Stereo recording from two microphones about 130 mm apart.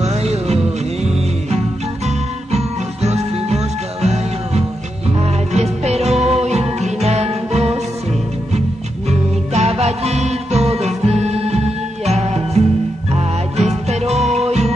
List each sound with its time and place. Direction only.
0.0 s music: 55° right (ahead or behind)
2.0 s music: 55° right (ahead or behind)